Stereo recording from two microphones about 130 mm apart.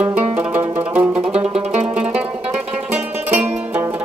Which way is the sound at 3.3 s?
15° right (ahead or behind).